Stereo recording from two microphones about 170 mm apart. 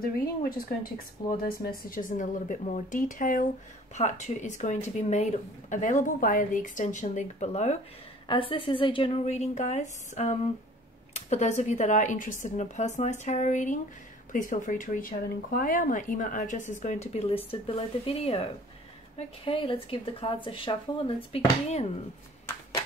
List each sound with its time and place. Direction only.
0.0 s speech: 60° left (ahead or behind)
1.2 s speech: 20° left (ahead or behind)
1.8 s a woman's voice: 55° left (ahead or behind); by 21.9 s 35° left (ahead or behind)